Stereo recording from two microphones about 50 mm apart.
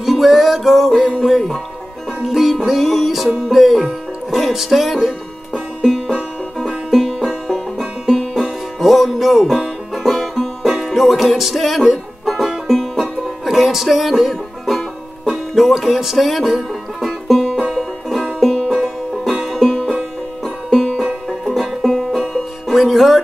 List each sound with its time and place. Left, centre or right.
0.0 s music: centre
19.4 s music: centre
20.9 s music: centre
21.3 s music: centre